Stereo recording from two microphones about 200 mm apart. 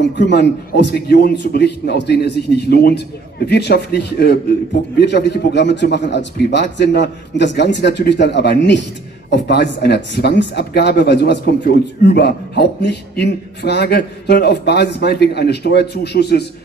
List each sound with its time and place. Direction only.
0.2 s a man's voice: 60° left (ahead or behind)